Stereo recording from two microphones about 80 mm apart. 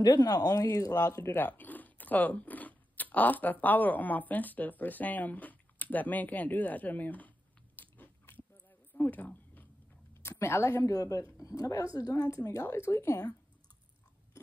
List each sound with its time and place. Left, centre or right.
0.0 s speech: left
1.4 s speech: left
8.9 s a sound: left
10.2 s a woman's voice: left
10.9 s speech: left